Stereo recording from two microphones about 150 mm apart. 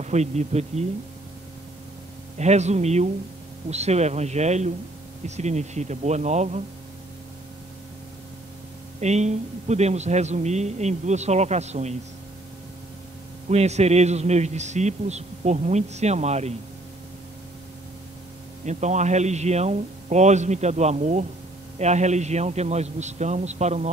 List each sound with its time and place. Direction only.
0.0 s a man's voice: 50° right (ahead or behind)
2.3 s a man's voice: 50° right (ahead or behind)
9.0 s a man's voice: 50° right (ahead or behind)
13.5 s a man's voice: 45° right (ahead or behind)
18.7 s a man's voice: 50° right (ahead or behind)